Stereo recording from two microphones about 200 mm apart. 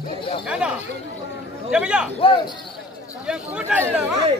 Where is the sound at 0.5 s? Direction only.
5° right (ahead or behind).